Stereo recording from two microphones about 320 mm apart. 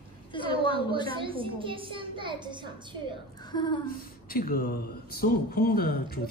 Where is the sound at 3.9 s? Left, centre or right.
Left.